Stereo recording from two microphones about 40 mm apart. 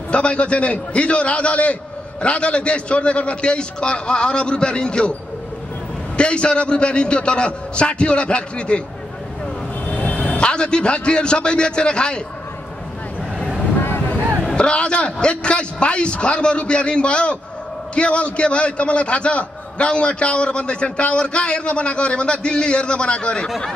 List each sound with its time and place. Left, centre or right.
0.1 s a man's voice: left
6.1 s a man's voice: left
9.8 s a man's voice: left
13.7 s boat: left
14.5 s a man's voice: left